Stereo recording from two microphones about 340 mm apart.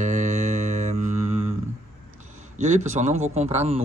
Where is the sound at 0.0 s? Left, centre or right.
Right.